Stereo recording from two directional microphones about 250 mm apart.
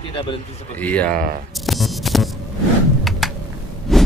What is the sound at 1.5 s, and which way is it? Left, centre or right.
Hum, centre.